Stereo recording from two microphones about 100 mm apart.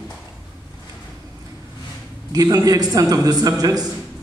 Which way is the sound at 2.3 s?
35° right (ahead or behind).